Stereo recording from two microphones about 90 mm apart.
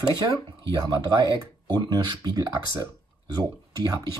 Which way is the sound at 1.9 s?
50° right (ahead or behind).